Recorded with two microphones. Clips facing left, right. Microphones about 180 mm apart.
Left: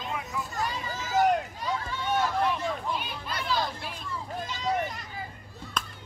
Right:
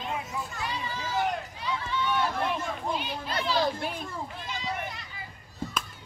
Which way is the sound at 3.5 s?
50° right (ahead or behind).